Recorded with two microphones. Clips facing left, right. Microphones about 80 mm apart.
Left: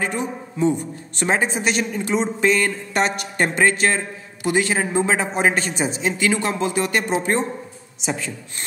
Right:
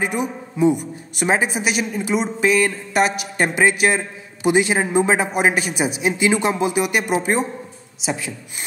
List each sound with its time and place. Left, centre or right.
0.0 s a woman's voice: centre